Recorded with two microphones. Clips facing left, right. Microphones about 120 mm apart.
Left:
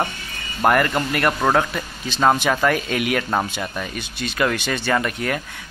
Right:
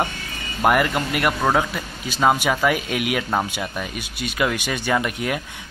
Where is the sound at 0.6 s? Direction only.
5° right (ahead or behind).